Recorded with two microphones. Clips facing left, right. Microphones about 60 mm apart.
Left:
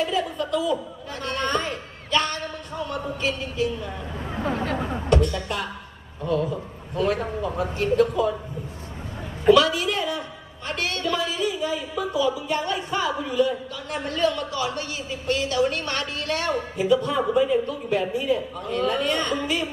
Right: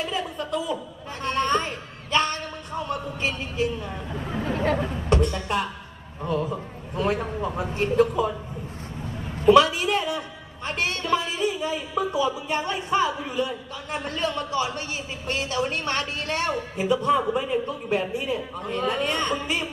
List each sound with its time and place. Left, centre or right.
0.1 s chuckle: right
1.2 s a sound: right
5.1 s speech: right
9.5 s speech: right